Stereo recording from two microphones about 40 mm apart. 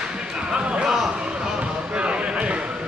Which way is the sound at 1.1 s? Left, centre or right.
Right.